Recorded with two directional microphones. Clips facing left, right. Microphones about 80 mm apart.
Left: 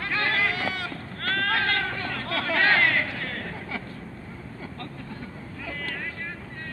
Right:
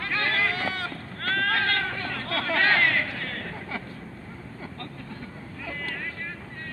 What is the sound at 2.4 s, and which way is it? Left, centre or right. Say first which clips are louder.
Chatter: left 1 dB; centre.